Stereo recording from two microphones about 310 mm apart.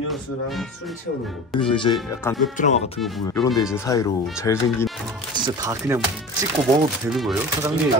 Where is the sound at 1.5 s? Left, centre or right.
Centre.